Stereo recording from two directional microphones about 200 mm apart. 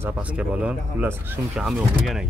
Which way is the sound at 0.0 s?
5° right (ahead or behind).